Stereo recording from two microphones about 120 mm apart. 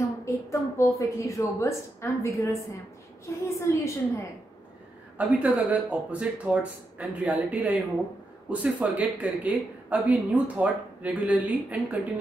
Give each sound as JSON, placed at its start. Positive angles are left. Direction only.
{"t": 0.2, "sound": "a woman's voice", "side_deg": 25}
{"t": 5.2, "sound": "speech", "side_deg": -10}